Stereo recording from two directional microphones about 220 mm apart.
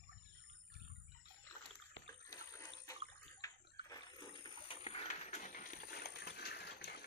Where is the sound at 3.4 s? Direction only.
20° left (ahead or behind); by 7.0 s 45° left (ahead or behind).